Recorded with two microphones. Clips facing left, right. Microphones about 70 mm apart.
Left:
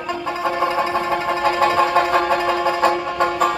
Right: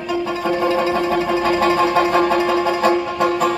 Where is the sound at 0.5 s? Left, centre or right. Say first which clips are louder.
Right 3 dB; left.